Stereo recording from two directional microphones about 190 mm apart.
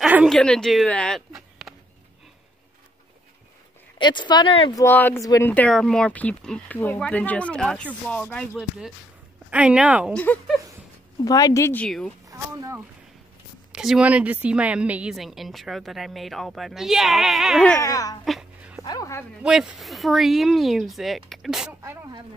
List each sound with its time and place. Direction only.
0.0 s speech: 5° right (ahead or behind)
4.0 s speech: 25° left (ahead or behind)
4.8 s speech: 10° left (ahead or behind)
5.5 s a woman's voice: 5° left (ahead or behind)
10.1 s speech: 5° left (ahead or behind)
11.2 s speech: 20° left (ahead or behind)
12.3 s speech: 15° right (ahead or behind)
13.7 s a woman's voice: 5° right (ahead or behind)
17.7 s speech: 15° left (ahead or behind)
18.2 s a sound: centre (ahead or behind)
18.9 s speech: 15° left (ahead or behind)
19.4 s a woman's voice: 5° right (ahead or behind)